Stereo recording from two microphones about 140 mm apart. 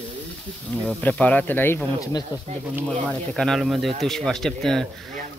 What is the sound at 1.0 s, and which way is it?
Speech, 10° left (ahead or behind).